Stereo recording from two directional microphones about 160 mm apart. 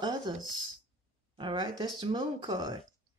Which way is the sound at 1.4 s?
30° right (ahead or behind).